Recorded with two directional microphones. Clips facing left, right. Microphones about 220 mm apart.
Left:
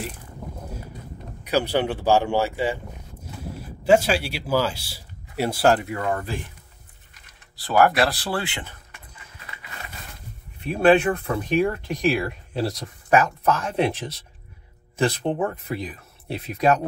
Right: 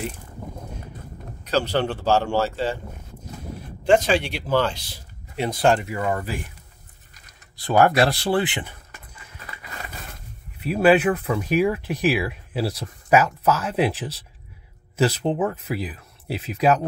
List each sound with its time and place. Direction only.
0.4 s a sound: centre (ahead or behind)
1.4 s speech: 10° left (ahead or behind)
3.8 s speech: 5° left (ahead or behind)
7.6 s speech: 25° right (ahead or behind)
10.6 s speech: 5° right (ahead or behind)